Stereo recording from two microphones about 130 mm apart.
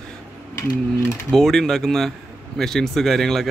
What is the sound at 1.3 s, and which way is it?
A man's voice, 5° left (ahead or behind).